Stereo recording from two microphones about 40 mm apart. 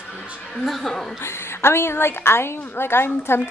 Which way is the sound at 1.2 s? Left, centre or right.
Left.